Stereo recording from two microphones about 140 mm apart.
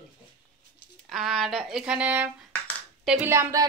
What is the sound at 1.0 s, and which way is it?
A woman's voice, centre (ahead or behind).